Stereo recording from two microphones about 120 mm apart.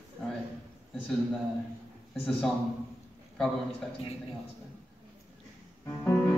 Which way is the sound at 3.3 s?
5° left (ahead or behind).